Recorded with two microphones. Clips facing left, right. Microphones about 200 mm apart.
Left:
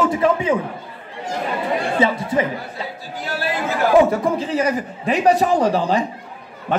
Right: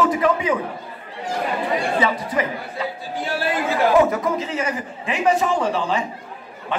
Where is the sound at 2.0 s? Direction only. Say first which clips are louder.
Left 5 dB; 25° left (ahead or behind).